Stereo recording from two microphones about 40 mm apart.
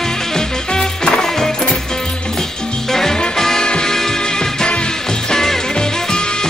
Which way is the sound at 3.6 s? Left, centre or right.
Left.